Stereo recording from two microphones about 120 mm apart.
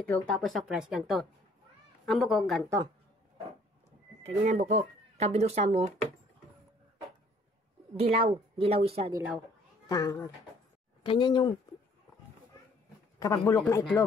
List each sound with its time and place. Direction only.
0.0 s speech: 15° left (ahead or behind)
0.4 s speech: centre (ahead or behind)
4.2 s speech: 75° right (ahead or behind)
8.0 s a woman's voice: 90° right
8.3 s speech: 55° right (ahead or behind)
9.8 s speech: 30° left (ahead or behind)
11.0 s speech: 40° left (ahead or behind)
13.2 s speech: 25° left (ahead or behind)